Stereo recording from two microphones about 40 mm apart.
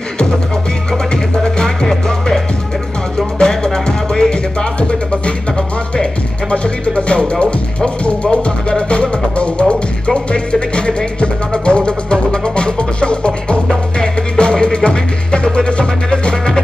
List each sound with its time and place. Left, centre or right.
1.1 s music: centre
7.1 s speech: left
8.0 s music: left